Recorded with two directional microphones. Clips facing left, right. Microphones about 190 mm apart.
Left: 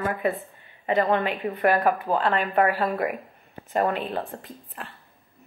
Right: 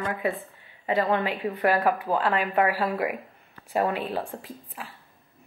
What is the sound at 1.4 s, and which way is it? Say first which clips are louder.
Speech: even; 20° right (ahead or behind).